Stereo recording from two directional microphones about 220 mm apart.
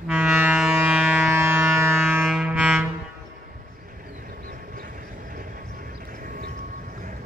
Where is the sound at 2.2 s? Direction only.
5° right (ahead or behind).